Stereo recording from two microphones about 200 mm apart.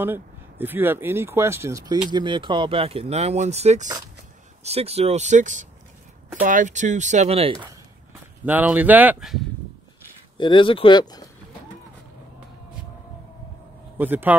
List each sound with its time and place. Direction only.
0.0 s speech: 10° right (ahead or behind); by 7.7 s 30° right (ahead or behind)
8.5 s speech: 10° right (ahead or behind)
10.3 s speech: 25° left (ahead or behind)
13.9 s speech: 10° right (ahead or behind)